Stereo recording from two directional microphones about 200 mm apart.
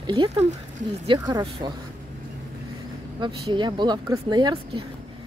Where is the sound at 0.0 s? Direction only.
25° right (ahead or behind).